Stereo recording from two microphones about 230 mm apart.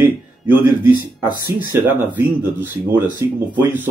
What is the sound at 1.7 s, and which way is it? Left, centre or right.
Speech, centre.